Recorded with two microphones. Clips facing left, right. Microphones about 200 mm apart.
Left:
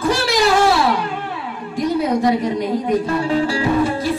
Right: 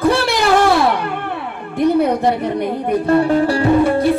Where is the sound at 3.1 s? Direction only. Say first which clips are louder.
Right 5 dB; 55° right (ahead or behind).